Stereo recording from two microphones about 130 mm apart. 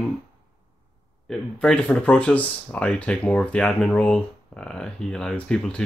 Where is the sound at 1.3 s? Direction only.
5° left (ahead or behind).